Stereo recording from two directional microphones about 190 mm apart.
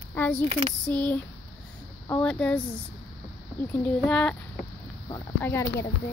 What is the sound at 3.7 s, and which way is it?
Speech, 5° left (ahead or behind).